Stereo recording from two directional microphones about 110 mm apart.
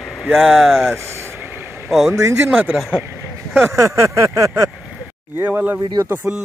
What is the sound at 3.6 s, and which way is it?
Speech, 30° right (ahead or behind).